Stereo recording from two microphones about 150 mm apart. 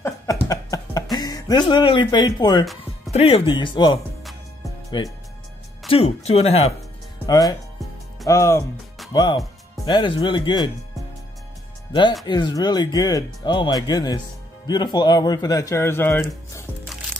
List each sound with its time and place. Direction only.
0.0 s a sound: 20° left (ahead or behind)
1.1 s speech: 25° left (ahead or behind)
3.1 s speech: 45° left (ahead or behind)
4.2 s music: centre (ahead or behind)
4.9 s speech: 35° left (ahead or behind)
7.2 s speech: 25° left (ahead or behind)
11.9 s speech: 30° left (ahead or behind)